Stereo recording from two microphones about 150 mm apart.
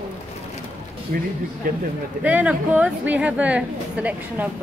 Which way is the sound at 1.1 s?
75° right (ahead or behind).